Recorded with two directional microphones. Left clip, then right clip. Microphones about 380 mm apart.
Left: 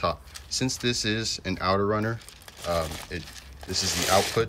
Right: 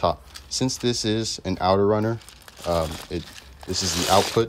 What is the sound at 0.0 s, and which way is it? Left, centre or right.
Speech, centre.